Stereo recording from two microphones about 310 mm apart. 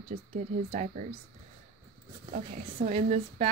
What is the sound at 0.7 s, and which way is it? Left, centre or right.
Speech, right.